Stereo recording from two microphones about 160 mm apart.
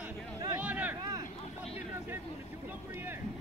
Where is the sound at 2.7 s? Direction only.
15° right (ahead or behind).